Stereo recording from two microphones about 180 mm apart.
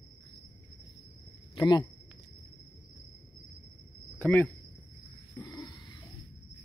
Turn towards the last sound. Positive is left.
turn(degrees=20)  # may be behind; listen again after turning